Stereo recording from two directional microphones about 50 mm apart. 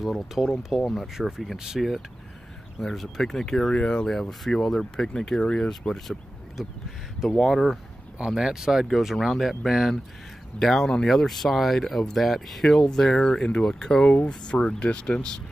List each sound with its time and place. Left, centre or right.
0.3 s speech: centre
1.1 s speech: centre
4.1 s speech: centre
5.7 s speech: centre
14.0 s speech: left